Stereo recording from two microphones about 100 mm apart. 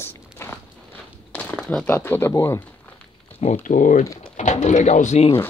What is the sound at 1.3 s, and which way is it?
Crumpling, 10° left (ahead or behind).